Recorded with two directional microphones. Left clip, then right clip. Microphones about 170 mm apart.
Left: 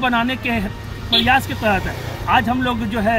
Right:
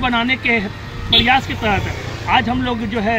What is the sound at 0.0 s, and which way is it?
Speech, 20° left (ahead or behind).